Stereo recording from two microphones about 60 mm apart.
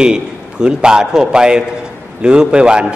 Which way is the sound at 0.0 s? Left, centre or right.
Centre.